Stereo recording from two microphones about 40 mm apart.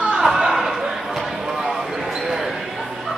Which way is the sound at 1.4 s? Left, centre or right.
Centre.